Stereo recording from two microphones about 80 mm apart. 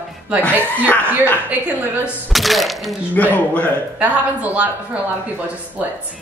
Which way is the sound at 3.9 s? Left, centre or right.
Centre.